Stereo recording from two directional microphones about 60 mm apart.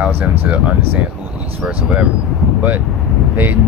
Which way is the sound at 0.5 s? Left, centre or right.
Right.